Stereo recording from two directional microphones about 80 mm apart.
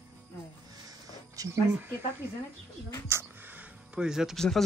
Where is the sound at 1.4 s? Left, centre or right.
Right.